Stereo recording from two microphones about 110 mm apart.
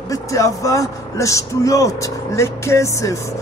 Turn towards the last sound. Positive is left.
turn(degrees=30)  # may be behind; listen again after turning